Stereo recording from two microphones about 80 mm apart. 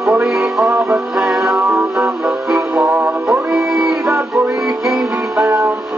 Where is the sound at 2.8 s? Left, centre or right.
Right.